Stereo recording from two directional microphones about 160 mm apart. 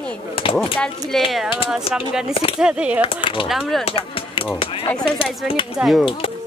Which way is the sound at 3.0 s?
30° left (ahead or behind).